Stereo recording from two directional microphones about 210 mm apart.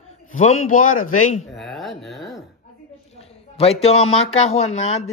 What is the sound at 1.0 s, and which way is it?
Speech, 90° left.